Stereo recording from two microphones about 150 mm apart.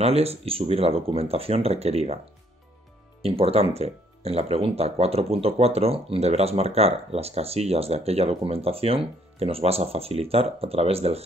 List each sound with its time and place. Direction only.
0.0 s speech: 40° right (ahead or behind)
3.2 s speech: 40° right (ahead or behind)